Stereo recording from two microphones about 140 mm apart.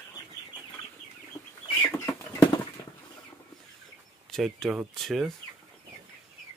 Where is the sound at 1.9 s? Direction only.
20° left (ahead or behind).